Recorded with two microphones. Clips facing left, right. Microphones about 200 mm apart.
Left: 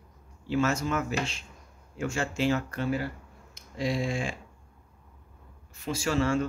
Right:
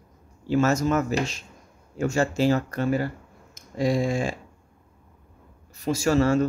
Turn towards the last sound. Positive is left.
turn(degrees=-40)  # may be behind; listen again after turning